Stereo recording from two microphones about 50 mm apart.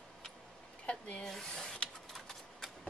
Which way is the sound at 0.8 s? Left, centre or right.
Left.